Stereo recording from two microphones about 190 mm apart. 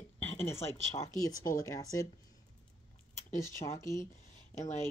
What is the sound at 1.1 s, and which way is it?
Speech, 20° left (ahead or behind).